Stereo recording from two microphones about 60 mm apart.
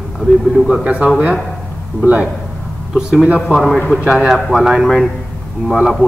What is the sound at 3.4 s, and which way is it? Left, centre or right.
Speech, centre.